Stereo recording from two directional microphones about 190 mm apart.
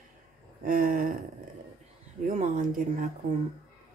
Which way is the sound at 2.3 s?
40° right (ahead or behind).